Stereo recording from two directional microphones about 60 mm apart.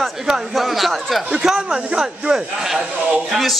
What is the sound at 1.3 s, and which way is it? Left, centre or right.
A man's voice, centre.